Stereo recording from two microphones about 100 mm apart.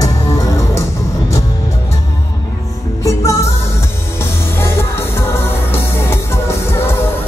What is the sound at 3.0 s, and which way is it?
Music, 30° left (ahead or behind).